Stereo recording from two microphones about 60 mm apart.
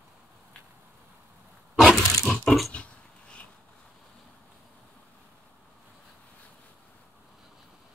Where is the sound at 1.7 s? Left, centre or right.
Centre.